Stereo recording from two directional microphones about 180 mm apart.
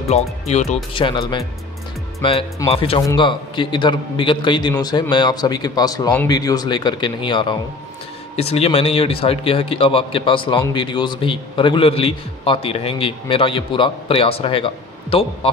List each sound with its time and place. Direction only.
0.1 s a man's voice: 40° left (ahead or behind)
0.9 s a man's voice: 25° left (ahead or behind)